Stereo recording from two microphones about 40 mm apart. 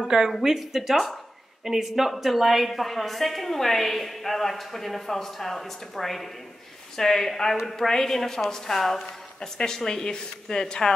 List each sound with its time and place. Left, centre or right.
0.1 s speech: right
0.6 s a woman's voice: centre